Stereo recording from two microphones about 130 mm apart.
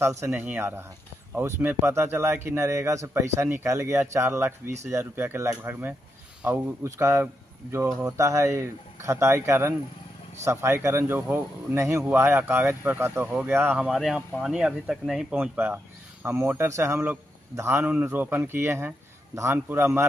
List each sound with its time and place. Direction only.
0.0 s speech: 20° right (ahead or behind); by 15.2 s 5° right (ahead or behind)
15.3 s speech: 15° right (ahead or behind)